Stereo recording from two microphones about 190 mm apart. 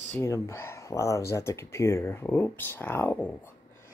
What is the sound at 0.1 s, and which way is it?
Speech, 15° left (ahead or behind).